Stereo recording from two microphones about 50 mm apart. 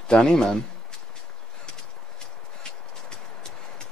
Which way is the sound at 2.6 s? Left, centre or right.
Centre.